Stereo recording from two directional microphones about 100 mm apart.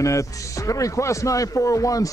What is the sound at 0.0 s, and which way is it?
Speech, 30° left (ahead or behind).